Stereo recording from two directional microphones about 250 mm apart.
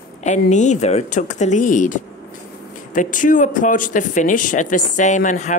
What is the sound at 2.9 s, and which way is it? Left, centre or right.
Speech, left.